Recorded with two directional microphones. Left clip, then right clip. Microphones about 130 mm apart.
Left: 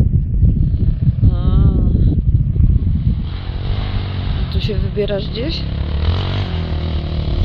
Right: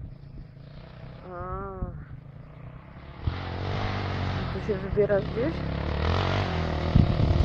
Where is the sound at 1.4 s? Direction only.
30° left (ahead or behind).